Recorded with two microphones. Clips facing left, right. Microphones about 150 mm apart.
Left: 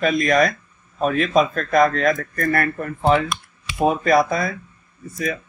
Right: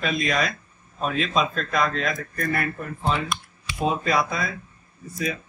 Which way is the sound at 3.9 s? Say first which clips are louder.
Left 7 dB; 45° left (ahead or behind).